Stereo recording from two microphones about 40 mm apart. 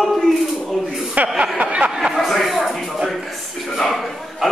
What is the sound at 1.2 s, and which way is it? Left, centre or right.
Speech, right.